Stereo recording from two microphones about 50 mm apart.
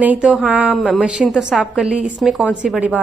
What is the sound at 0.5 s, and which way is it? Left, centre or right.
A woman's voice, centre.